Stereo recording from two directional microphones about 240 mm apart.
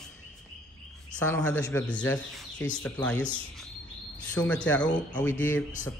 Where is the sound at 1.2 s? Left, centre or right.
Centre.